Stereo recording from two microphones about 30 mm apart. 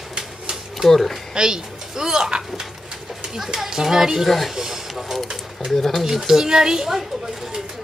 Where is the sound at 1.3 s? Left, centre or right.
Right.